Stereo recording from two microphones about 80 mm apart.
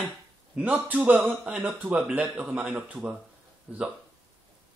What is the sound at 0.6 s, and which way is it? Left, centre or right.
Speech, centre.